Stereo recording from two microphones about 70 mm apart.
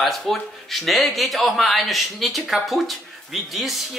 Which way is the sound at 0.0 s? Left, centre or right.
Centre.